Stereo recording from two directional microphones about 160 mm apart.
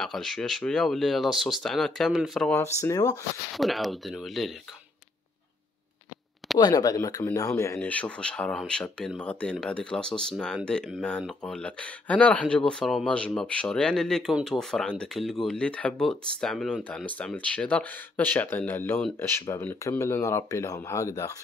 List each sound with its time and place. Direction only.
0.0 s speech: centre (ahead or behind)
2.5 s speech: 20° left (ahead or behind)
3.5 s speech: centre (ahead or behind)
6.6 s speech: 20° left (ahead or behind)